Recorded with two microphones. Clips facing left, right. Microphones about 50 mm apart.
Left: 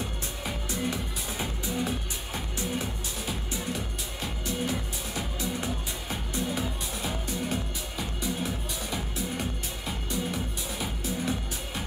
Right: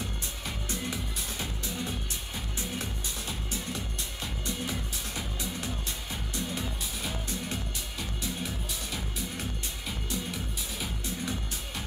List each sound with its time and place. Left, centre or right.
0.7 s music: centre
5.6 s music: centre
6.5 s music: centre